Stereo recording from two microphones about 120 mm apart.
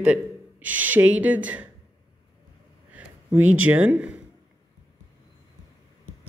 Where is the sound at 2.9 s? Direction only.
15° right (ahead or behind).